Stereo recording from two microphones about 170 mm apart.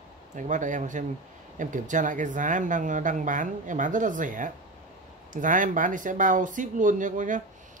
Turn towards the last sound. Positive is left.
turn(degrees=-50)  # may be behind; listen again after turning